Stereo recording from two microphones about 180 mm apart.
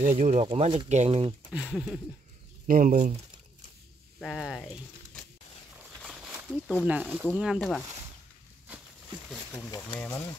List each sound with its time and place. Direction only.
0.0 s speech: 40° right (ahead or behind)
1.5 s speech: 5° right (ahead or behind)
2.6 s speech: 45° right (ahead or behind)
4.2 s speech: centre (ahead or behind)
6.0 s a sound: 5° right (ahead or behind)
6.5 s speech: centre (ahead or behind)
9.9 s speech: 10° left (ahead or behind)